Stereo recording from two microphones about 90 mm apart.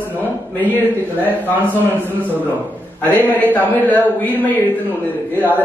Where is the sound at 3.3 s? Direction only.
20° left (ahead or behind).